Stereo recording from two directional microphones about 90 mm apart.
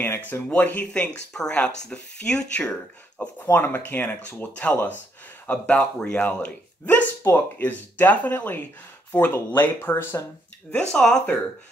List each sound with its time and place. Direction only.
0.0 s speech: 25° left (ahead or behind)
3.4 s speech: 20° left (ahead or behind)
10.7 s speech: 10° left (ahead or behind)